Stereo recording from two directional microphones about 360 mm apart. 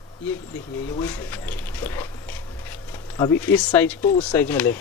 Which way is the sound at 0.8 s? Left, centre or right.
Centre.